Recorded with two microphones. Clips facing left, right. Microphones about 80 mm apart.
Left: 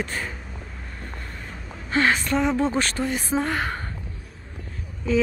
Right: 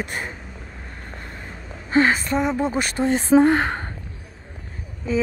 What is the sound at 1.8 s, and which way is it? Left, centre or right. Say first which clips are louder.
Speech: right 3 dB; centre.